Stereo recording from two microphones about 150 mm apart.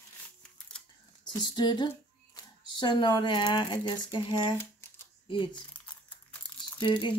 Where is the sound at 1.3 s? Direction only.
30° left (ahead or behind).